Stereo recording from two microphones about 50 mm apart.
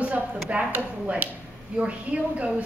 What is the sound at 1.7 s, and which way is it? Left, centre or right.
Speech, right.